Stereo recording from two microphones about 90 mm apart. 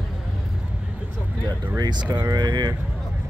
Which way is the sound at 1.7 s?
55° right (ahead or behind).